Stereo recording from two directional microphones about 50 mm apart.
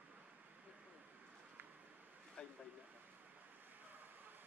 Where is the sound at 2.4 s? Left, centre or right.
Left.